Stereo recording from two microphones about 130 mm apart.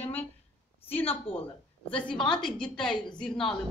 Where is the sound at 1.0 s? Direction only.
45° left (ahead or behind).